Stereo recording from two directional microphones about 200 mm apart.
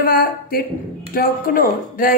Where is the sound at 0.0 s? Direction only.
45° left (ahead or behind).